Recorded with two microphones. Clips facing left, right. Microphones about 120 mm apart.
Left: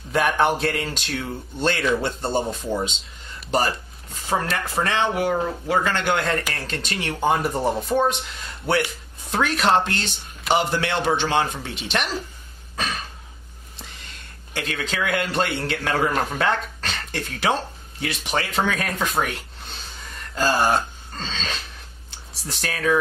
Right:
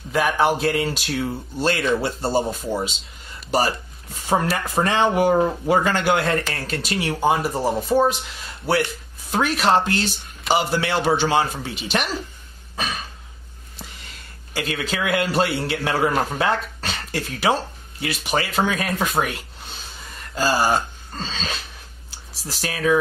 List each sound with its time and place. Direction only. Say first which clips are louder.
0.1 s speech: right 1 dB; centre (ahead or behind)
4.8 s speech: right 5 dB; 15° right (ahead or behind)
12.7 s throat clearing: even; 5° right (ahead or behind)
14.5 s speech: right 2 dB; 5° right (ahead or behind)